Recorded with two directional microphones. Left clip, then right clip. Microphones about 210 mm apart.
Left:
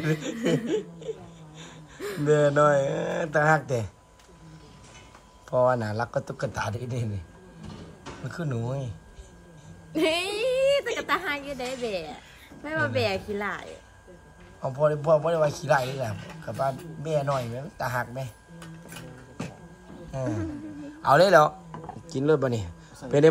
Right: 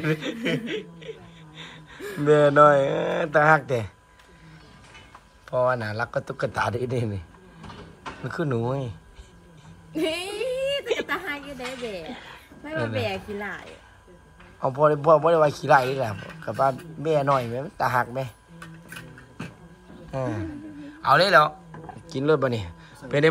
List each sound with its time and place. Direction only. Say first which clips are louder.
0.0 s speech: right 1 dB; 10° left (ahead or behind)
2.0 s speech: right 4 dB; 5° left (ahead or behind)
5.5 s a man's voice: even; 15° left (ahead or behind)
9.9 s a sound: left 2 dB; centre (ahead or behind)
12.6 s a man's voice: left 2 dB; centre (ahead or behind)
20.1 s speech: right 2 dB; 5° left (ahead or behind)
21.0 s speech: even; 15° left (ahead or behind)
21.8 s a sound: right 1 dB; 10° left (ahead or behind)